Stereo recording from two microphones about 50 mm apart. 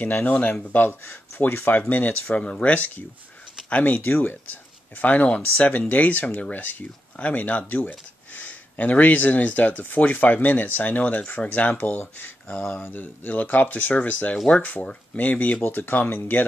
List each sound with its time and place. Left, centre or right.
0.0 s speech: left
2.2 s speech: left
12.5 s speech: left
12.9 s speech: left